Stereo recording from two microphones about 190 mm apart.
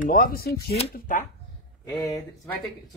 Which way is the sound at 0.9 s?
45° left (ahead or behind).